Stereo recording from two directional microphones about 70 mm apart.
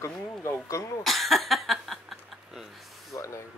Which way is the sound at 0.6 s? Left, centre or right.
Left.